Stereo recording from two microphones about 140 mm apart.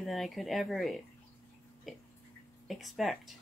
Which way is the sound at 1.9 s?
Centre (ahead or behind).